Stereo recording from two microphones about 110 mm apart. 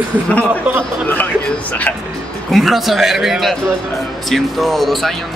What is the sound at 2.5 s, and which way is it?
Speech, centre (ahead or behind).